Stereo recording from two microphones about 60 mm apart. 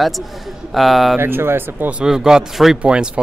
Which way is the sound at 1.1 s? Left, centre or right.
Right.